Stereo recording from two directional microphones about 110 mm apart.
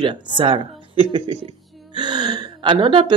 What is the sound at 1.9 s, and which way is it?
Speech, 40° right (ahead or behind).